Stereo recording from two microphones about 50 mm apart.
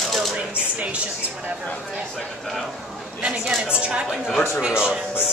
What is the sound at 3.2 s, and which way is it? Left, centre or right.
A woman's voice, right.